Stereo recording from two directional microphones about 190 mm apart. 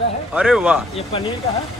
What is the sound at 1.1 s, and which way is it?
Speech, 30° left (ahead or behind).